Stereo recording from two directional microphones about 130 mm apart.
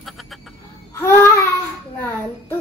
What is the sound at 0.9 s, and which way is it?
Babbling, 20° left (ahead or behind).